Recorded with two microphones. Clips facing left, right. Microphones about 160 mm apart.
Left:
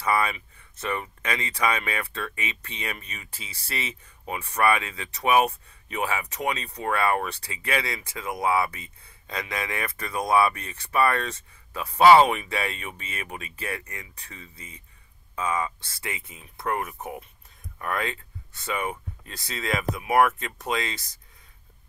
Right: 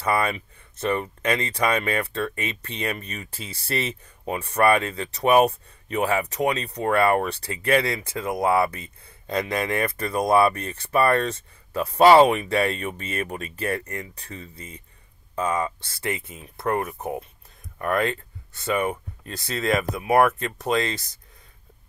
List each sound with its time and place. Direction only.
0.1 s speech: 50° right (ahead or behind)
0.7 s speech: 35° right (ahead or behind)
7.5 s speech: 45° right (ahead or behind)
8.2 s speech: 55° right (ahead or behind)
9.4 s speech: 35° right (ahead or behind)
20.6 s speech: 60° right (ahead or behind)